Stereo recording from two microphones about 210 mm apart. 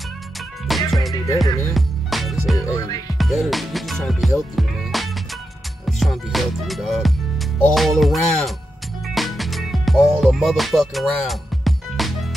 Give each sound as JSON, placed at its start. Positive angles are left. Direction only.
{"t": 0.7, "sound": "music", "side_deg": 0}
{"t": 1.1, "sound": "music", "side_deg": 15}
{"t": 1.7, "sound": "music", "side_deg": 0}